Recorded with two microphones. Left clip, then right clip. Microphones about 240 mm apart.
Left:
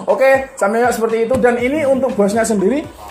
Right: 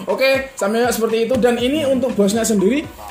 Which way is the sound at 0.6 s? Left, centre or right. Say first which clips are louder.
Left 3 dB; centre.